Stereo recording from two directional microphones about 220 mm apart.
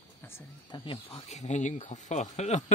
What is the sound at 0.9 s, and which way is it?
Speech, 25° left (ahead or behind).